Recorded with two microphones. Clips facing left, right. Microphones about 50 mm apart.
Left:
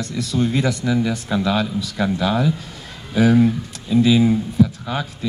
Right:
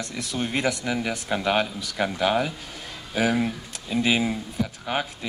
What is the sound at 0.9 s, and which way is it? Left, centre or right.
Speech, centre.